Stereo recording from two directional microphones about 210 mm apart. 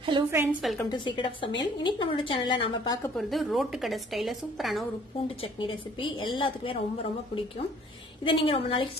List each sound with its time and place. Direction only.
0.3 s a woman's voice: 10° right (ahead or behind)
0.8 s a woman's voice: 20° left (ahead or behind)
3.2 s a woman's voice: centre (ahead or behind)
5.4 s a woman's voice: 25° left (ahead or behind)